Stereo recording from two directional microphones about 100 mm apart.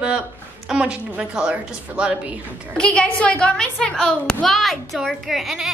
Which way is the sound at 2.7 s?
10° left (ahead or behind).